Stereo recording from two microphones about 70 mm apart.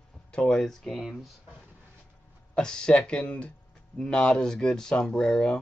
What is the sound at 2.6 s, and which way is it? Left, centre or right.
Speech, centre.